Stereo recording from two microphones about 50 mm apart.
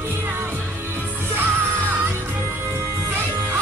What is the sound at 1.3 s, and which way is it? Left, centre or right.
Music, right.